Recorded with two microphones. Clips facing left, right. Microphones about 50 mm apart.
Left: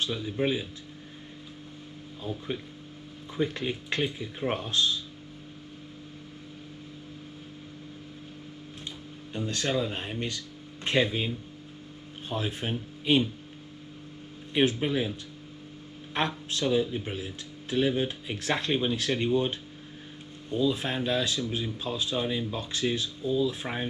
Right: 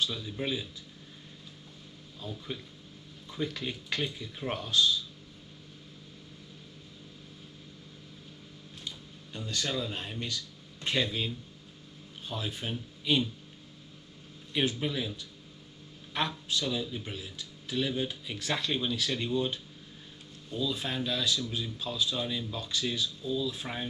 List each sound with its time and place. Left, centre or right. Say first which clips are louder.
0.0 s speech: left 5 dB; left
2.2 s speech: left 5 dB; left
8.8 s a sound: even; left
9.5 s speech: left 4 dB; left
14.5 s speech: left 5 dB; left